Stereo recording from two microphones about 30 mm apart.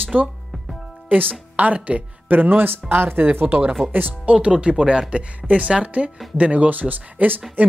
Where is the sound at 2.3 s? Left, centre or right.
Right.